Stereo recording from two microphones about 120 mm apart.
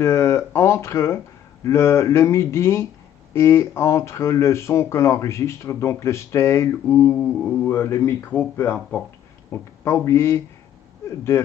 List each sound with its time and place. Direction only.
0.0 s speech: 25° left (ahead or behind)
7.1 s mantra: 5° left (ahead or behind)
7.6 s speech: 20° left (ahead or behind)
9.5 s speech: 20° left (ahead or behind)